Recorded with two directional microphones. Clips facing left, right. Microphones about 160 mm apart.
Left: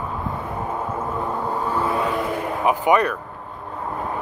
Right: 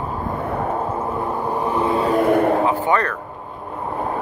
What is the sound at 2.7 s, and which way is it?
Speech, 15° left (ahead or behind).